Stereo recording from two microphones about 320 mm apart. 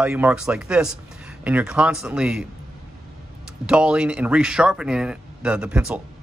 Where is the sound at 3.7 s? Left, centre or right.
Centre.